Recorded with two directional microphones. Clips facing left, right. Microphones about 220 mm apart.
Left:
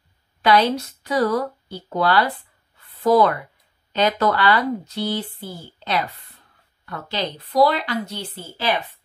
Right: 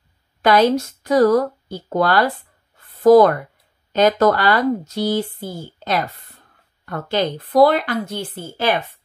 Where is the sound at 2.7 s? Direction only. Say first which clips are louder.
Right 7 dB; 45° right (ahead or behind).